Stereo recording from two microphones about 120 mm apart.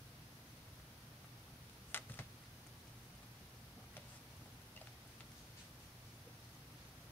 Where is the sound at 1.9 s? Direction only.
20° left (ahead or behind).